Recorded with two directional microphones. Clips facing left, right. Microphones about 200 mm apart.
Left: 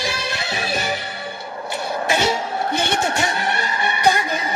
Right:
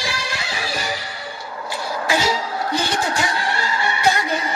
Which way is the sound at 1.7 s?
25° left (ahead or behind).